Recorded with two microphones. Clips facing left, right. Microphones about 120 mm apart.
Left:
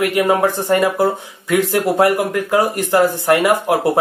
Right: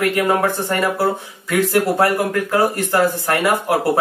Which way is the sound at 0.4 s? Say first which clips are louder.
Left 4 dB; 20° left (ahead or behind).